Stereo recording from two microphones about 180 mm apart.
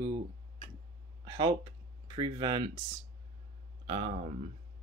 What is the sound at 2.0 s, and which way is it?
Speech, 25° right (ahead or behind).